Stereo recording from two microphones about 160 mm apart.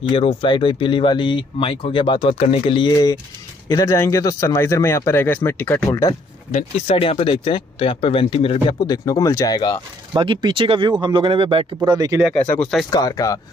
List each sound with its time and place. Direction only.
0.1 s speech: 35° left (ahead or behind); by 6.1 s 20° left (ahead or behind)
6.5 s speech: 35° left (ahead or behind); by 9.6 s 20° left (ahead or behind)
10.1 s speech: 30° right (ahead or behind)
12.9 s speech: 20° left (ahead or behind)